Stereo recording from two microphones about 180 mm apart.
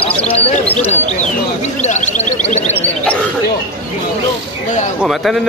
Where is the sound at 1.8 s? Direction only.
40° left (ahead or behind).